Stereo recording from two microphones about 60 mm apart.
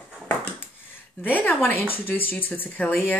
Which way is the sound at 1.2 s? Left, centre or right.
Left.